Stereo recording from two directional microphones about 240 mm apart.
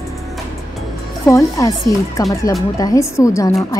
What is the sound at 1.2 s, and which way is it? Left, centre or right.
A woman's voice, centre.